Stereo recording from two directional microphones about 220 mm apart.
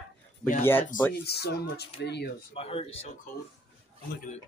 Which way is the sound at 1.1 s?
45° left (ahead or behind).